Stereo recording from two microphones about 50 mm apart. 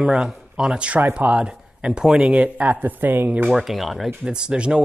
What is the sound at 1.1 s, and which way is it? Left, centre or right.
Speech, right.